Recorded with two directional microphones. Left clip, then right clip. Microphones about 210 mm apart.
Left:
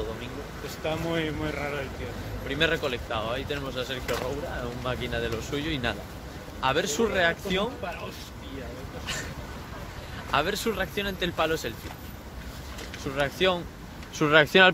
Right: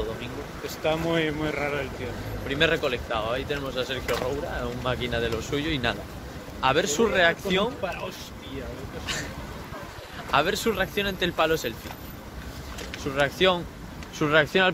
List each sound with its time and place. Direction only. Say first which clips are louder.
0.8 s speech: right 4 dB; 25° right (ahead or behind)
2.4 s speech: right 2 dB; 15° left (ahead or behind)
10.3 s speech: right 3 dB; 10° left (ahead or behind)
13.0 s speech: right 3 dB; 10° left (ahead or behind)
14.1 s speech: left 2 dB; 55° left (ahead or behind)